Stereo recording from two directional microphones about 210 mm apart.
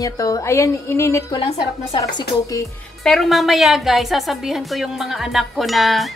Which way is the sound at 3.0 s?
Centre (ahead or behind).